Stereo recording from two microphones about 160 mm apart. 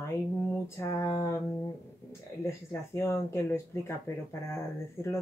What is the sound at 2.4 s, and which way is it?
Speech, 15° left (ahead or behind).